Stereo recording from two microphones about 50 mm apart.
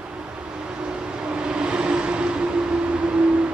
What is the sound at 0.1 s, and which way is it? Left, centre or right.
Vehicle, centre.